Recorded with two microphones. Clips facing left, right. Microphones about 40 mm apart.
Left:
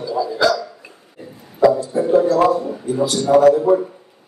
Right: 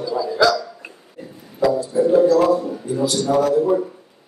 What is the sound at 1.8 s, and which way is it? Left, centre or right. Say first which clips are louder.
A man's voice: right 1 dB; left.